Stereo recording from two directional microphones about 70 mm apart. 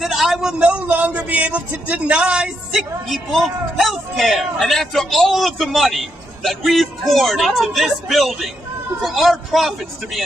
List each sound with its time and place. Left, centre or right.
0.0 s a sound: centre
0.6 s a man's voice: centre
3.3 s speech: centre